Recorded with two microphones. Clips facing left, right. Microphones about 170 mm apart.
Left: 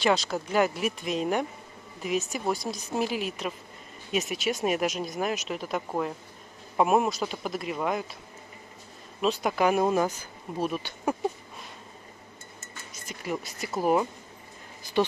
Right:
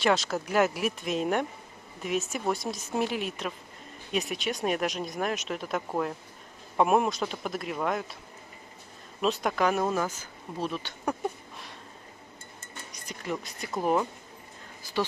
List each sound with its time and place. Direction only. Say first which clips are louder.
0.0 s speech: left 1 dB; centre (ahead or behind)
9.2 s speech: left 2 dB; centre (ahead or behind)
12.9 s speech: left 1 dB; 5° left (ahead or behind)
14.8 s speech: left 4 dB; 20° left (ahead or behind)